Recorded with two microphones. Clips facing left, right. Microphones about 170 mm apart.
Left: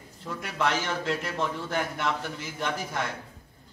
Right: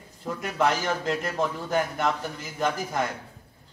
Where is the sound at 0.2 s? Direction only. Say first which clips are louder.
Right 4 dB; 45° right (ahead or behind).